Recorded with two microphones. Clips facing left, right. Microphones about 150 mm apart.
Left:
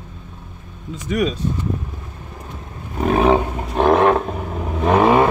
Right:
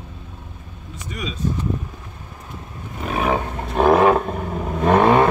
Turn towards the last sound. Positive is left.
turn(degrees=5)  # may be behind; listen again after turning